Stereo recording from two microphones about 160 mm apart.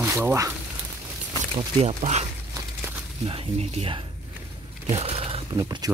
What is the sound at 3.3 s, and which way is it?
Speech, 40° right (ahead or behind).